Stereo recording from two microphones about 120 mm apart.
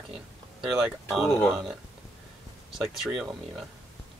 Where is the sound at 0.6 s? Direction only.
5° right (ahead or behind).